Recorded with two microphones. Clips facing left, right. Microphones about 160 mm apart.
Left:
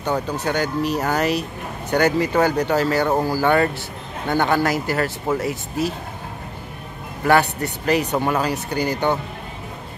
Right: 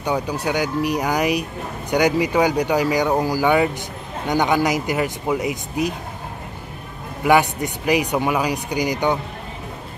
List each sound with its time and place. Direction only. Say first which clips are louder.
0.0 s speech: even; 10° right (ahead or behind)
7.2 s speech: right 1 dB; 15° right (ahead or behind)